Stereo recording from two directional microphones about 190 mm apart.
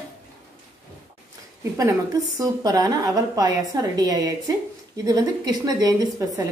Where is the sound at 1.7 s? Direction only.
20° right (ahead or behind).